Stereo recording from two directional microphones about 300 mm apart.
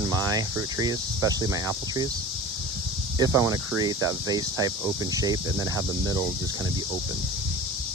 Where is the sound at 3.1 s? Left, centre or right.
Centre.